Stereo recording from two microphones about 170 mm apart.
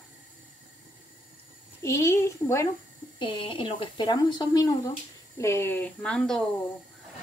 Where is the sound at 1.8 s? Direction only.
15° left (ahead or behind).